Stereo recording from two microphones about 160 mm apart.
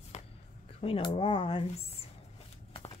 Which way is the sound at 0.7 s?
35° left (ahead or behind).